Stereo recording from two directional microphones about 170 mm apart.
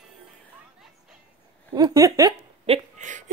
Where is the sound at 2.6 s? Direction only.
40° right (ahead or behind).